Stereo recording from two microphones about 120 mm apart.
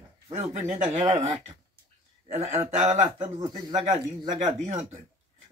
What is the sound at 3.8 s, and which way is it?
Speech, 80° right.